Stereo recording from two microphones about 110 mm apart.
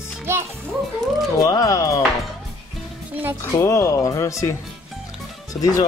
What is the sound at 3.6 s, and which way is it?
Speech, 25° left (ahead or behind).